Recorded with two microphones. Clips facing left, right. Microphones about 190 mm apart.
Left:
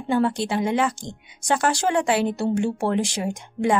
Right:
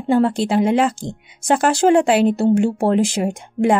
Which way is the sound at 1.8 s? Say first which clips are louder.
Right 12 dB; 45° right (ahead or behind).